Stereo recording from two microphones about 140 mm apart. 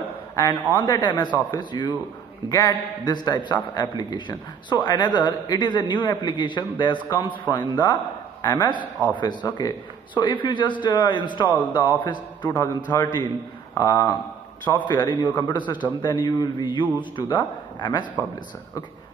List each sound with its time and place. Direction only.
0.7 s a man's voice: 30° left (ahead or behind)